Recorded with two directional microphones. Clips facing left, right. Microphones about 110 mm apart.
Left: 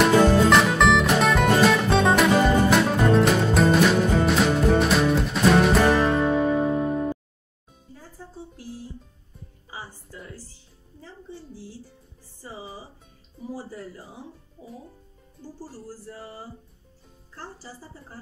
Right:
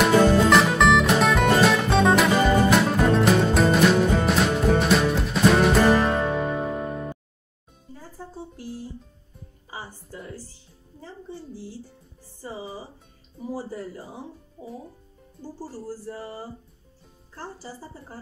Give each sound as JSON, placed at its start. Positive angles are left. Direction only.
{"t": 0.0, "sound": "music", "side_deg": 0}
{"t": 14.6, "sound": "a child's voice", "side_deg": -55}